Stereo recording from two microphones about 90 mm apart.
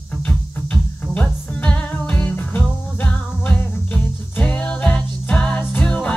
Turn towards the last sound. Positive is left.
turn(degrees=10)  # may be behind; listen again after turning